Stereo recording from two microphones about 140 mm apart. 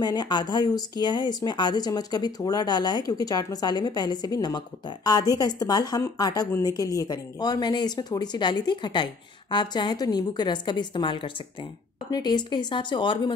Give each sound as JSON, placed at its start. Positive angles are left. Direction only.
{"t": 0.0, "sound": "a woman's voice", "side_deg": 30}